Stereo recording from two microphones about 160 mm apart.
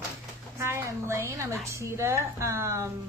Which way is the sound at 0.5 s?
15° right (ahead or behind).